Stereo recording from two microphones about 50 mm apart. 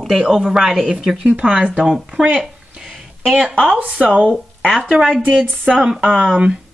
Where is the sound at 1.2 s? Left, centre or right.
Centre.